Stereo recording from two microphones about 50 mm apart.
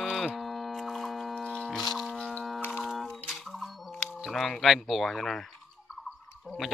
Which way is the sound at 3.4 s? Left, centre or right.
Centre.